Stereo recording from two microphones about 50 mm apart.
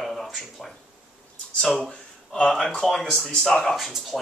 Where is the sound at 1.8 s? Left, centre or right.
Left.